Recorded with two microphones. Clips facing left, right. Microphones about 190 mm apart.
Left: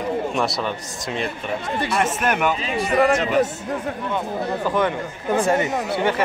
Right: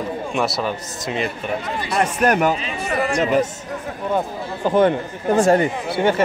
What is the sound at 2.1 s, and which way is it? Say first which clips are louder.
Speech: right 4 dB; 40° right (ahead or behind).